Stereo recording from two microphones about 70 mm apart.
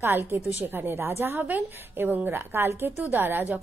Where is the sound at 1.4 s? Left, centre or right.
Right.